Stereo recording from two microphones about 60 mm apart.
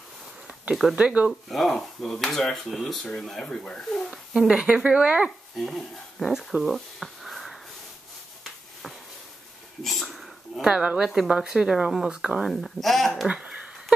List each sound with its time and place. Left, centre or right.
0.9 s speech: right
1.5 s speech: centre
4.1 s a sound: centre
4.5 s speech: centre
5.6 s speech: centre
9.8 s a sound: centre
10.6 s speech: centre
12.4 s speech: centre
13.3 s a sound: centre